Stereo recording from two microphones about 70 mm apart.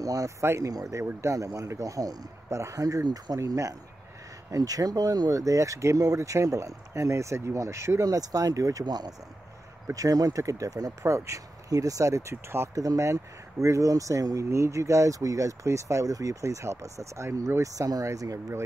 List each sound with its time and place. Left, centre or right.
0.0 s speech: right
3.3 s speech: right
8.0 s speech: right
8.8 s speech: right
9.9 s speech: right
11.1 s speech: right
12.7 s speech: right